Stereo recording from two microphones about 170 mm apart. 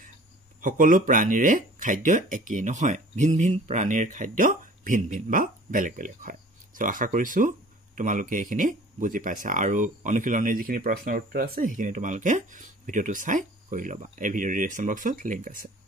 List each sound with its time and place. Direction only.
0.6 s speech: 50° right (ahead or behind)